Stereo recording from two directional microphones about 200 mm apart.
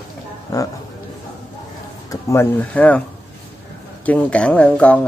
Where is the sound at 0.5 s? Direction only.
15° left (ahead or behind).